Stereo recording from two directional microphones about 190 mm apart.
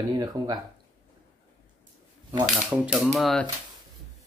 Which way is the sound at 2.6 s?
10° right (ahead or behind).